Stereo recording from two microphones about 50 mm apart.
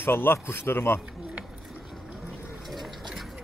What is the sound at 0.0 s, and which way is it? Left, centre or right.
A man's voice, left.